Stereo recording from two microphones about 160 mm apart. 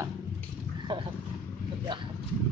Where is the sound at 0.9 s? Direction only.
30° right (ahead or behind).